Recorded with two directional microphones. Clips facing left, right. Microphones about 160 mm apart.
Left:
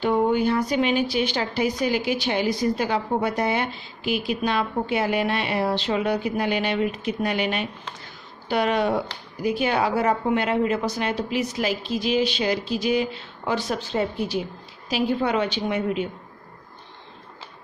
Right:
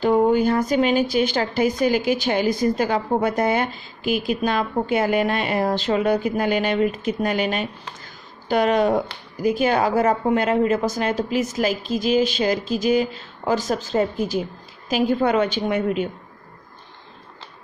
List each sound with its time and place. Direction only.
0.0 s speech: 40° right (ahead or behind)
8.0 s a sound: 45° right (ahead or behind)
9.4 s speech: 45° right (ahead or behind)